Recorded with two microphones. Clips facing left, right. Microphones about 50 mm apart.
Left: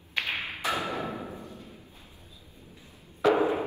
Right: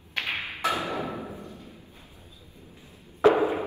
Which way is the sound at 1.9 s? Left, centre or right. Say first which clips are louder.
Right 2 dB; right.